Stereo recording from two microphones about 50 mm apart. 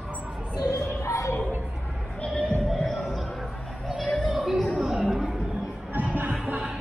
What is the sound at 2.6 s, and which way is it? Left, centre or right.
Music, centre.